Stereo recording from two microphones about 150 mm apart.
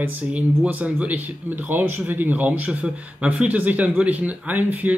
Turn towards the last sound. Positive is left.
turn(degrees=-10)  # may be behind; listen again after turning